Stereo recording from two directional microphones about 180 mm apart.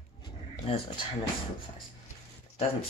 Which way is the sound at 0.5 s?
30° left (ahead or behind).